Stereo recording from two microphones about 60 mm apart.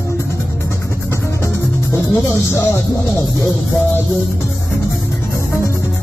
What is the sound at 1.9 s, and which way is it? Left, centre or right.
Speech, left.